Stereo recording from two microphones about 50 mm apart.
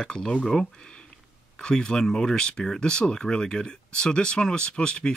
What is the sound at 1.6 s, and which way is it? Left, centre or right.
Speech, centre.